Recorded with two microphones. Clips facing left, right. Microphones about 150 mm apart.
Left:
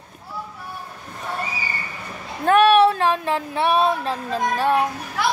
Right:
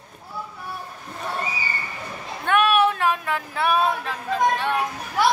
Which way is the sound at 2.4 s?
35° left (ahead or behind).